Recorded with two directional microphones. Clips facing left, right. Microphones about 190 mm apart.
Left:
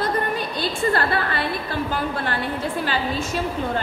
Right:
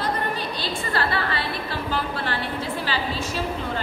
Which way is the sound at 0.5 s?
50° left (ahead or behind).